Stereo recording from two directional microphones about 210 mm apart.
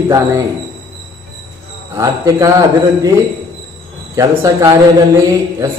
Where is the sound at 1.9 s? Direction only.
15° right (ahead or behind).